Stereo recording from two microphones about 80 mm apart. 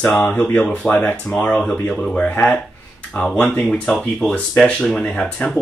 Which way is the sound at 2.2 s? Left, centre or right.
Left.